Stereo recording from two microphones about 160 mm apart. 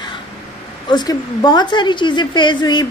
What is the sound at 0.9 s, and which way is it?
A woman's voice, 25° left (ahead or behind).